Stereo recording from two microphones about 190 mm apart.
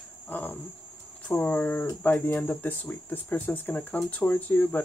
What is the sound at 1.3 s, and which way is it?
Speech, 10° left (ahead or behind).